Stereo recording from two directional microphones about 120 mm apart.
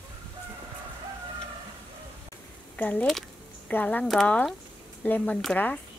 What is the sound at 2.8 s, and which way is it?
Speech, 10° left (ahead or behind).